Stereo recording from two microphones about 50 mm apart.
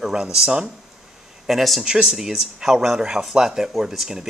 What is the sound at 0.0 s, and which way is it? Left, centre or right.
Speech, centre.